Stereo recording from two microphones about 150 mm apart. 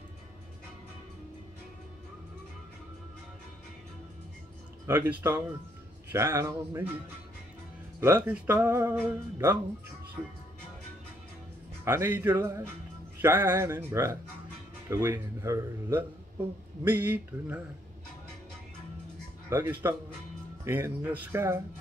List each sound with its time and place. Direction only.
4.8 s music: 15° right (ahead or behind)
8.0 s music: 15° right (ahead or behind)
11.8 s music: 15° right (ahead or behind)
19.5 s music: 15° right (ahead or behind)